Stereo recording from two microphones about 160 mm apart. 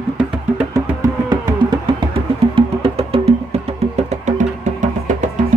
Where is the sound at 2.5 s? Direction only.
35° right (ahead or behind).